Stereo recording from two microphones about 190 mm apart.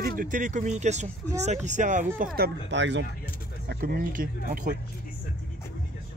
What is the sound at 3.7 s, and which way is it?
Speech, 50° right (ahead or behind).